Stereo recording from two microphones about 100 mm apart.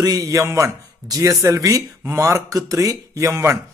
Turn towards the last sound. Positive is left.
turn(degrees=-30)  # may be behind; listen again after turning